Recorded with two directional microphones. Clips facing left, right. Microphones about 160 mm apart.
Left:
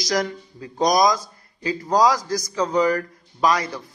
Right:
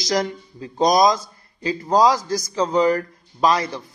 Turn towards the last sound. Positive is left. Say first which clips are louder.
# right 2 dB
turn(degrees=-30)  # may be behind; listen again after turning